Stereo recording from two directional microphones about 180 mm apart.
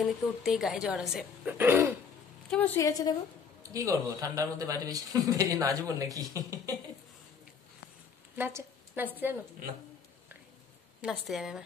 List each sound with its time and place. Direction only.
0.0 s speech: centre (ahead or behind)
2.5 s a woman's voice: 10° left (ahead or behind)
2.8 s a woman's voice: 20° left (ahead or behind)
3.6 s a man's voice: 20° right (ahead or behind)
8.4 s a woman's voice: 10° right (ahead or behind)
11.0 s speech: centre (ahead or behind)